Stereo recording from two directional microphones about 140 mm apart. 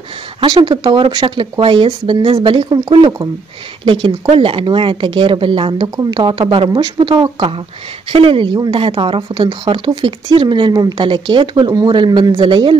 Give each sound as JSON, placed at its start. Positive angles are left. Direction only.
{"t": 0.4, "sound": "speech", "side_deg": -35}
{"t": 3.8, "sound": "speech", "side_deg": -35}